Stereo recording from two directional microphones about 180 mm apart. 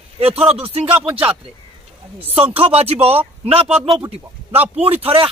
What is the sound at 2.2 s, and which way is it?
Speech, 30° right (ahead or behind).